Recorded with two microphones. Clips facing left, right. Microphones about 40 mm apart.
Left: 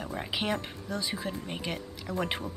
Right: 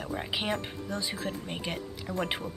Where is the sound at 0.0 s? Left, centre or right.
Centre.